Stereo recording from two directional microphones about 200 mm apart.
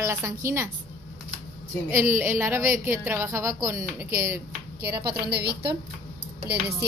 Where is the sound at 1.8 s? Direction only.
10° right (ahead or behind).